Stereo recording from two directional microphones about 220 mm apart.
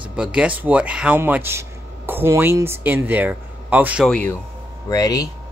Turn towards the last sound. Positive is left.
turn(degrees=15)  # may be behind; listen again after turning